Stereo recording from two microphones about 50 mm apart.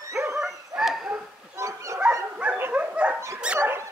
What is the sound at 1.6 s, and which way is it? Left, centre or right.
Dog, right.